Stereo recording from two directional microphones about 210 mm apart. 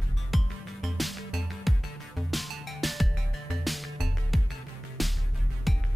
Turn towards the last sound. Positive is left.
turn(degrees=0)  # may be behind; listen again after turning